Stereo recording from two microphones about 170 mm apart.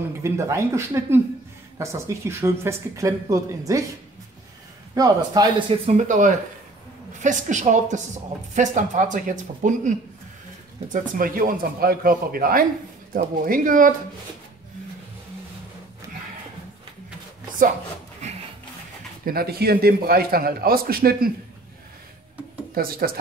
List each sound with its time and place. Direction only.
0.2 s speech: 15° right (ahead or behind)
4.9 s a man's voice: 20° right (ahead or behind)
5.9 s a man's voice: 45° right (ahead or behind)
19.2 s a man's voice: 65° right (ahead or behind)
22.8 s a man's voice: 60° right (ahead or behind)